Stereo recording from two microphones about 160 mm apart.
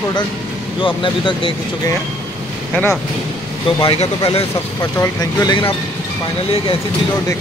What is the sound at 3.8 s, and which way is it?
Speech, 35° left (ahead or behind).